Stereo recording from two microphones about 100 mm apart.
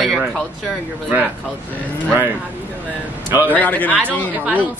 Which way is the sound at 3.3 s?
20° right (ahead or behind).